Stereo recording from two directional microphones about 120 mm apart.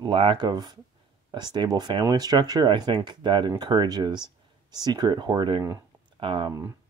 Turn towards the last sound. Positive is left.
turn(degrees=-45)  # may be behind; listen again after turning